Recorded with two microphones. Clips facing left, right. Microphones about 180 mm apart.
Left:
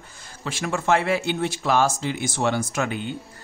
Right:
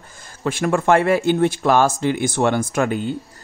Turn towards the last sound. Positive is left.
turn(degrees=-40)  # may be behind; listen again after turning